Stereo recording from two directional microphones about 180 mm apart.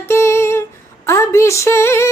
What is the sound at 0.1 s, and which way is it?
Female singing, 15° left (ahead or behind).